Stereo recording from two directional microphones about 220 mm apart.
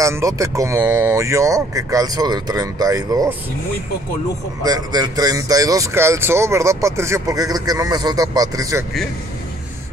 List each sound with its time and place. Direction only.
0.0 s speech: 15° right (ahead or behind)
4.6 s speech: 15° right (ahead or behind)